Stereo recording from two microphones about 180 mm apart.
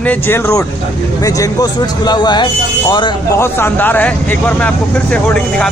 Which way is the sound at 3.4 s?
10° left (ahead or behind).